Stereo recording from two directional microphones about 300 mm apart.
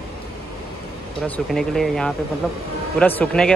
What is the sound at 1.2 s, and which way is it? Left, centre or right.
A man's voice, centre.